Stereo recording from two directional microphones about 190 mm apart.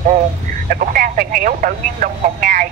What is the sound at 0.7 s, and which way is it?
Speech, 45° right (ahead or behind).